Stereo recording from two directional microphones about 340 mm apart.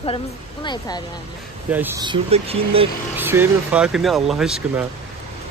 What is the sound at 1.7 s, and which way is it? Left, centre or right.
Speech, centre.